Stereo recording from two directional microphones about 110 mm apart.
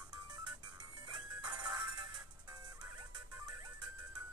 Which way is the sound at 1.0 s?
35° right (ahead or behind).